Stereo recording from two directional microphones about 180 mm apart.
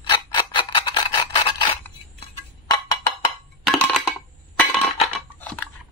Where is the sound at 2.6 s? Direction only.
25° left (ahead or behind).